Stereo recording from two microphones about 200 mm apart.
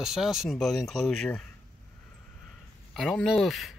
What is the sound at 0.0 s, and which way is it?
Speech, centre (ahead or behind).